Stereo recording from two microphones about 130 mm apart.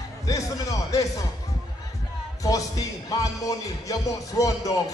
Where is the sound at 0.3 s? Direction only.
25° left (ahead or behind).